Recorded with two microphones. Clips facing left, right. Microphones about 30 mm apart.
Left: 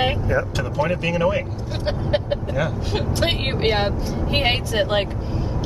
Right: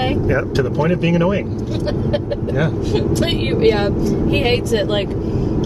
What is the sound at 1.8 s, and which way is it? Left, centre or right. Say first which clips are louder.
Speech: right 1 dB; left.